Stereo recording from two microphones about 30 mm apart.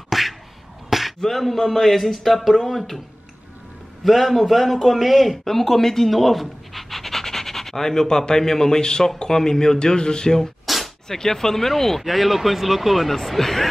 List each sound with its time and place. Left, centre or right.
0.1 s a sound: centre
1.2 s speech: centre
4.0 s speech: centre
5.4 s speech: centre; by 10.4 s left
10.7 s a sound: centre
11.1 s speech: centre
12.0 s speech: centre